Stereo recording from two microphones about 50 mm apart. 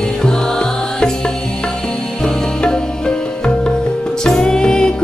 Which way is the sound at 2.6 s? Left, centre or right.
Centre.